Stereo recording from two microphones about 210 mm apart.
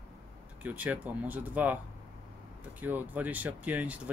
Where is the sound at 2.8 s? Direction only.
10° right (ahead or behind).